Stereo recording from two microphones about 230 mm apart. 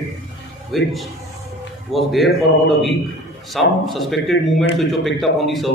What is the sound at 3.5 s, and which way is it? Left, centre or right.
A man's voice, centre.